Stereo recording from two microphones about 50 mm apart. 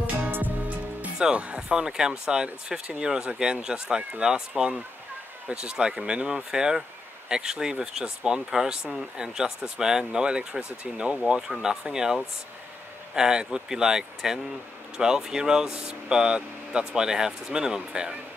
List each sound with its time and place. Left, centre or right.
1.1 s speech: centre
11.2 s speech: centre